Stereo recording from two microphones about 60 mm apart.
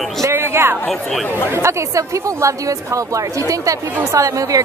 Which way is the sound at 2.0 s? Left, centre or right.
Right.